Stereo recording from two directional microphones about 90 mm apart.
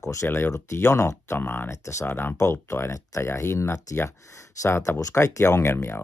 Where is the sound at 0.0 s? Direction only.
35° left (ahead or behind).